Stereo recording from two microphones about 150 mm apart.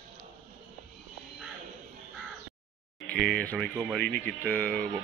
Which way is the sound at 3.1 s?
5° left (ahead or behind).